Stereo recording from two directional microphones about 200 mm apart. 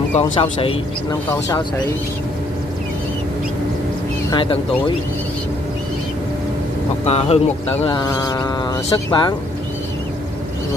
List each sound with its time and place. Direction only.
0.1 s speech: 25° left (ahead or behind)
4.3 s speech: 25° left (ahead or behind)
7.1 s speech: 30° left (ahead or behind)